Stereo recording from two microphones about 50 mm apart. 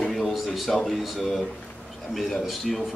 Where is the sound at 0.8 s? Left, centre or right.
Centre.